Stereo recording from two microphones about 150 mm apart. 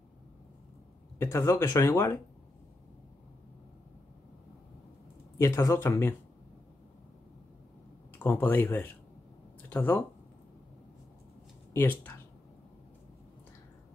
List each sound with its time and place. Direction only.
1.1 s speech: 15° left (ahead or behind)
5.4 s speech: 20° left (ahead or behind)
8.2 s speech: 15° left (ahead or behind)
11.7 s speech: 10° left (ahead or behind)